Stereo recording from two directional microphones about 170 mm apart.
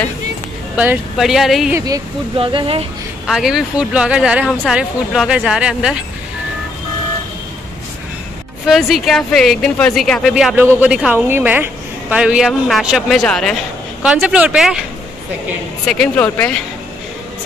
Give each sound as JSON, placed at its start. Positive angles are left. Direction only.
{"t": 0.7, "sound": "a woman's voice", "side_deg": -5}
{"t": 2.3, "sound": "speech", "side_deg": -30}
{"t": 3.3, "sound": "a woman's voice", "side_deg": -5}
{"t": 8.6, "sound": "a woman's voice", "side_deg": 0}
{"t": 10.3, "sound": "a woman's voice", "side_deg": -10}
{"t": 15.9, "sound": "speech", "side_deg": 5}